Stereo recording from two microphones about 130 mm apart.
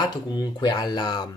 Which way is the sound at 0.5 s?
35° left (ahead or behind).